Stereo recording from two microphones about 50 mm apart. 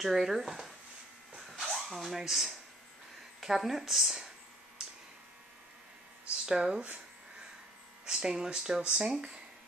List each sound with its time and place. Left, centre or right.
0.0 s speech: centre
1.3 s a sound: centre
2.1 s speech: centre
6.4 s speech: centre
8.0 s speech: centre